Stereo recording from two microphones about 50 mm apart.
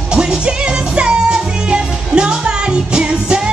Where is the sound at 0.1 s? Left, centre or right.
Centre.